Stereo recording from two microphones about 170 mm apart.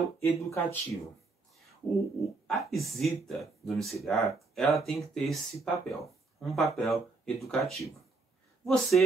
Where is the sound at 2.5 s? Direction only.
Centre (ahead or behind).